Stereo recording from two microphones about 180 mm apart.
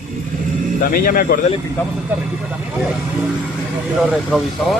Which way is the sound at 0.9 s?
55° left (ahead or behind).